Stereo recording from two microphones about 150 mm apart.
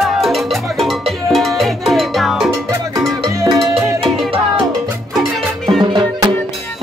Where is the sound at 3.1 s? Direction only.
25° right (ahead or behind).